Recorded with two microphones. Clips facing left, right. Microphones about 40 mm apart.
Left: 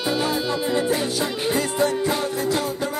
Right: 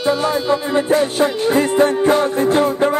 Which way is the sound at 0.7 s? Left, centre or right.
Right.